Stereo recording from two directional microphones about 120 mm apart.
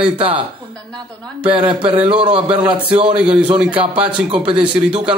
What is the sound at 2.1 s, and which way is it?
Speech, 10° right (ahead or behind).